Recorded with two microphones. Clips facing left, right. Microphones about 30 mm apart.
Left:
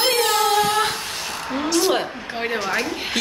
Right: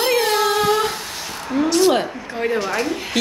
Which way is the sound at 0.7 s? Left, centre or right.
Left.